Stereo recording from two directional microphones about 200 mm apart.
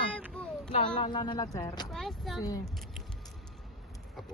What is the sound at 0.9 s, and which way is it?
Speech, 25° left (ahead or behind).